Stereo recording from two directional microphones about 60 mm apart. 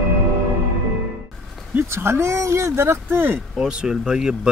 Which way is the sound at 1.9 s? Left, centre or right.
Right.